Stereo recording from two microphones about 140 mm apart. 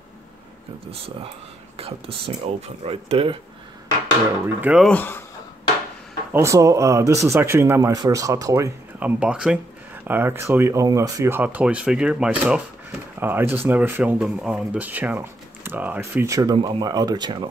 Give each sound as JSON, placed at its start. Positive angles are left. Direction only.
{"t": 1.8, "sound": "speech", "side_deg": -45}
{"t": 4.6, "sound": "speech", "side_deg": -10}
{"t": 4.8, "sound": "speech", "side_deg": 15}
{"t": 6.3, "sound": "speech", "side_deg": -20}
{"t": 9.0, "sound": "speech", "side_deg": -5}